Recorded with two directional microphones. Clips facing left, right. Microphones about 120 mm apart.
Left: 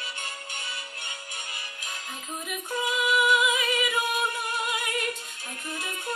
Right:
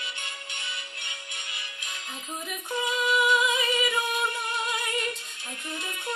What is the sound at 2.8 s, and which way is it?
Music, 5° left (ahead or behind).